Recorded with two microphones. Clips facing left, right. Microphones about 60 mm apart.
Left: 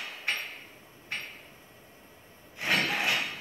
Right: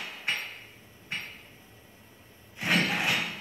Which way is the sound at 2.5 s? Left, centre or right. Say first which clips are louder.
Right 1 dB; centre.